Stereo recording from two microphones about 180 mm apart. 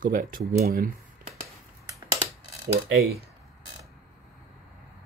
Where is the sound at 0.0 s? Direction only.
50° right (ahead or behind).